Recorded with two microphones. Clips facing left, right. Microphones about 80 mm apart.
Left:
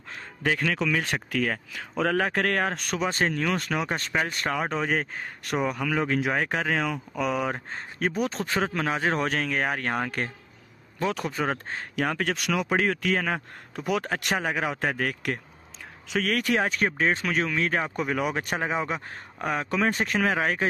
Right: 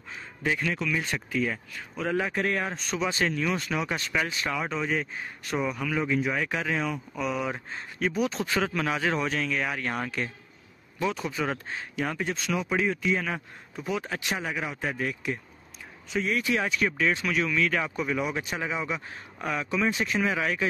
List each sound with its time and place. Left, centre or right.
0.1 s speech: left
3.0 s speech: left
9.2 s speech: left
11.9 s speech: left
14.2 s speech: left
16.5 s speech: left